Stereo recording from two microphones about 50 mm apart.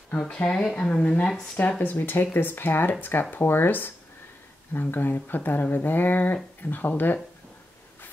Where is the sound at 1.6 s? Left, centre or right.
Left.